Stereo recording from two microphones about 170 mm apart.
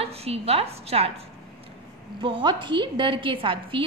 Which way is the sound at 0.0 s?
35° right (ahead or behind).